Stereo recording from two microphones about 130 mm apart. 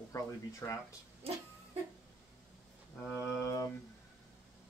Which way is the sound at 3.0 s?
20° left (ahead or behind).